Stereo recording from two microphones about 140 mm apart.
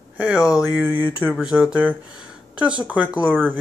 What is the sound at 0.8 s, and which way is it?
Speech, 15° right (ahead or behind).